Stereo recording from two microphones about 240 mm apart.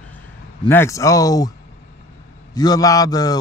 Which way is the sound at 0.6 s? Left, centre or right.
Centre.